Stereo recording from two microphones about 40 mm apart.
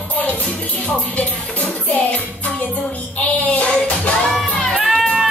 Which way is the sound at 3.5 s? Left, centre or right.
Left.